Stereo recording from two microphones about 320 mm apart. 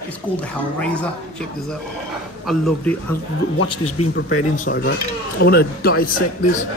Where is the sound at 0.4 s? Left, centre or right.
Centre.